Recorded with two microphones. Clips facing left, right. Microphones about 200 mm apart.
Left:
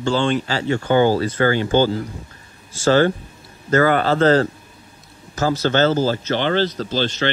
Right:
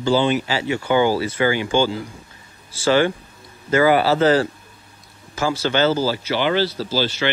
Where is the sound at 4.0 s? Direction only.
10° right (ahead or behind).